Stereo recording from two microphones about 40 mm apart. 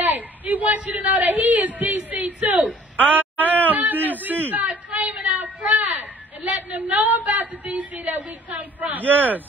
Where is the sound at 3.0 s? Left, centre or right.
Right.